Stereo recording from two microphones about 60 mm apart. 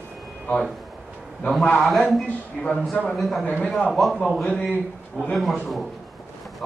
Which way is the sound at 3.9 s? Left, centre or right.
Centre.